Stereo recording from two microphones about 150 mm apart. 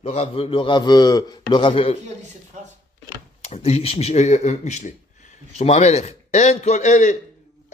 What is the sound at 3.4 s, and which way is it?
A man's voice, 45° left (ahead or behind).